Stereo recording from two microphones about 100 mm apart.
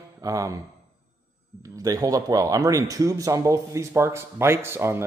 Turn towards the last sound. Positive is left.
turn(degrees=-25)  # may be behind; listen again after turning